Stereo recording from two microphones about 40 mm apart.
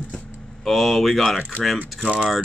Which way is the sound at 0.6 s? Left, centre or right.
Centre.